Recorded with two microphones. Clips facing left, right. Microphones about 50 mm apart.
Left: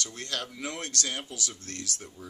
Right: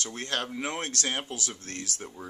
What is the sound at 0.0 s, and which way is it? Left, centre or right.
Speech, right.